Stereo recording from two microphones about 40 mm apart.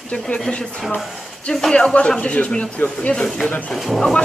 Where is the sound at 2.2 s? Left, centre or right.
Left.